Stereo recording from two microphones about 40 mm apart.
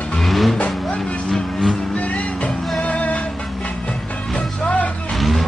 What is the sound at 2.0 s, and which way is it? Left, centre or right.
Music, left.